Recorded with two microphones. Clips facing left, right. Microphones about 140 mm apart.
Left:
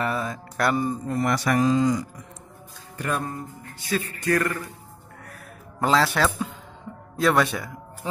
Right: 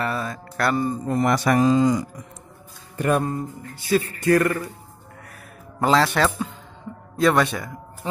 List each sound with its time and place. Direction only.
0.0 s music: 15° left (ahead or behind)
1.0 s speech: 20° right (ahead or behind)
3.2 s a man's voice: 20° right (ahead or behind)
5.8 s a man's voice: centre (ahead or behind)